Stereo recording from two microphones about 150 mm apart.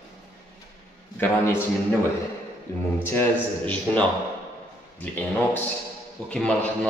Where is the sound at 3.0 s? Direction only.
15° left (ahead or behind).